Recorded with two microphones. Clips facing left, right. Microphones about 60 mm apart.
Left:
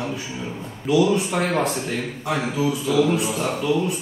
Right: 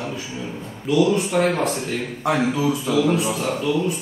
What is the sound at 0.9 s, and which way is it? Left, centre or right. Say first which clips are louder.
Speech: right 1 dB; centre.